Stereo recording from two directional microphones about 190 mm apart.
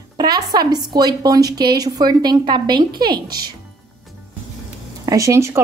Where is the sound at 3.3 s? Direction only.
55° right (ahead or behind).